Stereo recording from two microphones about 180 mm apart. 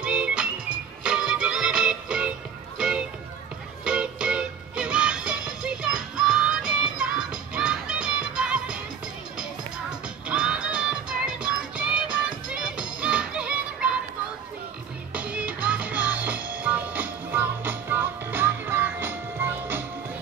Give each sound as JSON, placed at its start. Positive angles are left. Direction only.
{"t": 0.0, "sound": "music", "side_deg": -5}
{"t": 3.8, "sound": "music", "side_deg": -5}
{"t": 10.2, "sound": "music", "side_deg": -5}
{"t": 15.1, "sound": "music", "side_deg": -10}